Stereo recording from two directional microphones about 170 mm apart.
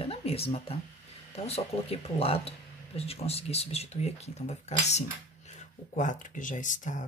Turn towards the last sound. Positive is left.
turn(degrees=50)  # may be behind; listen again after turning